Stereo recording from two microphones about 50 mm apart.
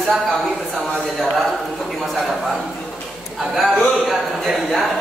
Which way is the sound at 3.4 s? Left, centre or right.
Centre.